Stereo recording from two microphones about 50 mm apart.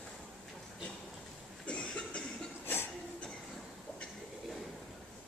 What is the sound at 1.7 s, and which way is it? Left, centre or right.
Cough, centre.